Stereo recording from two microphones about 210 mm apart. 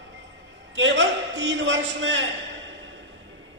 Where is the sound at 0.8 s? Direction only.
60° right (ahead or behind).